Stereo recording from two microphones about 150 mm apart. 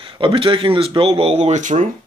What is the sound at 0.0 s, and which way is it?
Speech, 35° right (ahead or behind).